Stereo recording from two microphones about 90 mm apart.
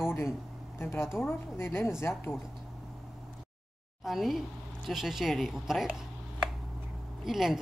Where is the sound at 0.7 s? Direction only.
30° left (ahead or behind).